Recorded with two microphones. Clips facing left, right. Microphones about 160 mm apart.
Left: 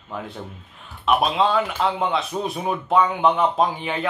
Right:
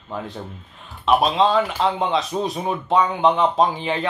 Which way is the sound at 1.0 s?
30° right (ahead or behind).